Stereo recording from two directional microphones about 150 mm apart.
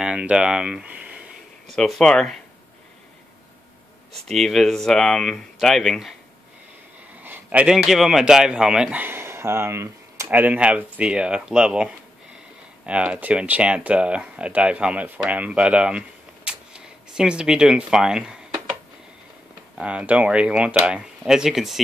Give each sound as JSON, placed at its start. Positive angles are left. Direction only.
{"t": 0.0, "sound": "speech", "side_deg": -5}
{"t": 1.8, "sound": "speech", "side_deg": 5}
{"t": 4.3, "sound": "speech", "side_deg": 0}
{"t": 7.2, "sound": "a man's voice", "side_deg": -10}
{"t": 16.4, "sound": "a sound", "side_deg": -5}
{"t": 19.8, "sound": "a man's voice", "side_deg": -10}